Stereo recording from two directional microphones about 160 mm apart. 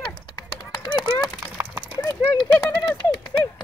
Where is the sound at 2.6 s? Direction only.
15° left (ahead or behind).